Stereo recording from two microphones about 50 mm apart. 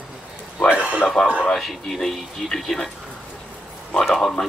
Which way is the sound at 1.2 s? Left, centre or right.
Centre.